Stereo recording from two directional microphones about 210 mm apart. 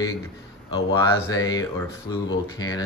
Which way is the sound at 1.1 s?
15° left (ahead or behind).